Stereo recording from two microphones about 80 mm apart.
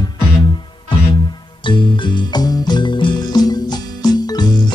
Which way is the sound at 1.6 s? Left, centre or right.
Left.